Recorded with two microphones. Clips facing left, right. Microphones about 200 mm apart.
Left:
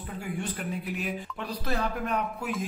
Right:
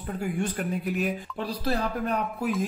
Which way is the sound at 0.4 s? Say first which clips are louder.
Right 5 dB; 45° right (ahead or behind).